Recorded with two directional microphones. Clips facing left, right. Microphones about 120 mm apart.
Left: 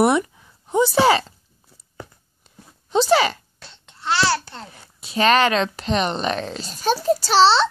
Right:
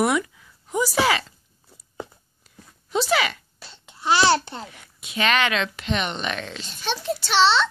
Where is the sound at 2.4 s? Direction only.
30° left (ahead or behind).